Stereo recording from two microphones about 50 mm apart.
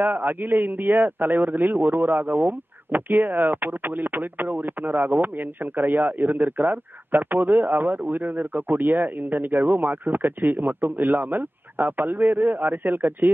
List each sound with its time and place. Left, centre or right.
0.0 s a man's voice: right